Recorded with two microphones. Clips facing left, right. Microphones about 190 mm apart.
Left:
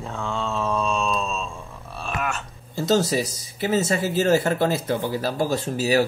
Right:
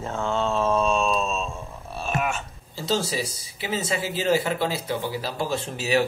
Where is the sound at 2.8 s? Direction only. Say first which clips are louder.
Left 5 dB; 50° left (ahead or behind).